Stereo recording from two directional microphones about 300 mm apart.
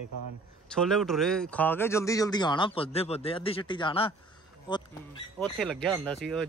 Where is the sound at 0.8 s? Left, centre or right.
Centre.